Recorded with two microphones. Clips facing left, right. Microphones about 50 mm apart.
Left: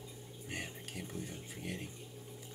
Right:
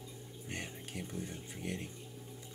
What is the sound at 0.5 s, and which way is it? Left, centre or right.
Speech, centre.